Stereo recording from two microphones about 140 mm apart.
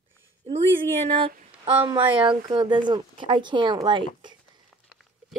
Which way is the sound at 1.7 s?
40° right (ahead or behind).